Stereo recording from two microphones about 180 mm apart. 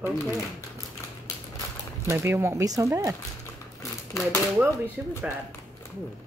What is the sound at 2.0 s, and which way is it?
Speech, 15° right (ahead or behind).